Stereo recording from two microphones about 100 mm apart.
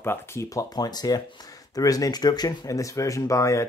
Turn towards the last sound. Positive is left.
turn(degrees=30)  # may be behind; listen again after turning